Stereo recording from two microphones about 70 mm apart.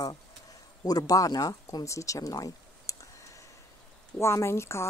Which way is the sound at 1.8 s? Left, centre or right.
Left.